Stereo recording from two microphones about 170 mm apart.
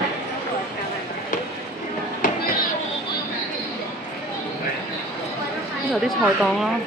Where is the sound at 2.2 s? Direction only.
50° left (ahead or behind).